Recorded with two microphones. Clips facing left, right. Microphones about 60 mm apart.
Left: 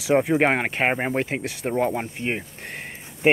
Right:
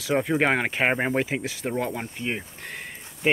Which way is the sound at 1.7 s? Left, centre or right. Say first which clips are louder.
Left 7 dB; left.